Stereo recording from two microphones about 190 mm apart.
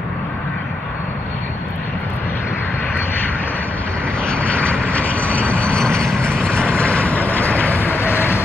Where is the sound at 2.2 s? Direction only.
10° left (ahead or behind).